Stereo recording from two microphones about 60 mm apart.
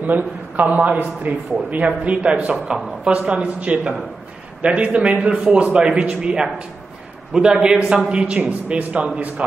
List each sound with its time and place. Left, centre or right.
0.0 s a man's voice: right
2.5 s a woman's voice: centre
3.0 s a man's voice: centre